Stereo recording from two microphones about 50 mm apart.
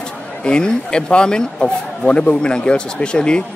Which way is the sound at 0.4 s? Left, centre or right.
Centre.